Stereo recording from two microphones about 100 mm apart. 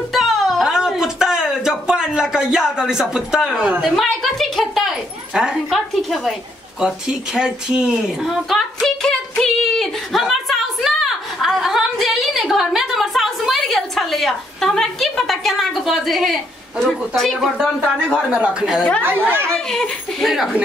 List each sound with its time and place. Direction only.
0.1 s a sound: centre (ahead or behind)
3.8 s speech: centre (ahead or behind)
18.1 s speech: 10° right (ahead or behind)
19.0 s speech: 20° right (ahead or behind)
19.5 s speech: 5° left (ahead or behind)